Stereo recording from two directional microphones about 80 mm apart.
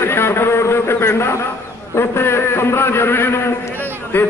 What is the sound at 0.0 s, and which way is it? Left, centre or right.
A man's voice, left.